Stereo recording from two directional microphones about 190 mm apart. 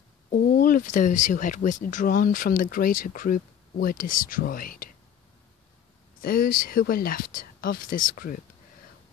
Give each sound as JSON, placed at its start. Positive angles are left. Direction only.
{"t": 0.3, "sound": "speech", "side_deg": 45}
{"t": 6.2, "sound": "speech", "side_deg": 50}